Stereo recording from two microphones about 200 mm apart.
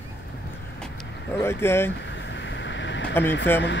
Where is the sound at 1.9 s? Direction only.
60° left (ahead or behind).